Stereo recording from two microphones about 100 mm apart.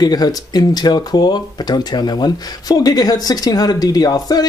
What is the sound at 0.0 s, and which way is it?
Speech, 40° left (ahead or behind).